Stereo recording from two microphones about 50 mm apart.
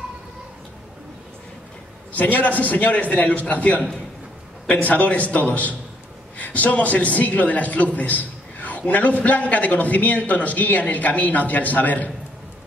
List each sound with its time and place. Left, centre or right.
2.1 s a man's voice: left